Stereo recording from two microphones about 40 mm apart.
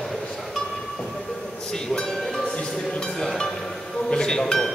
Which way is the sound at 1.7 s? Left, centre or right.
Centre.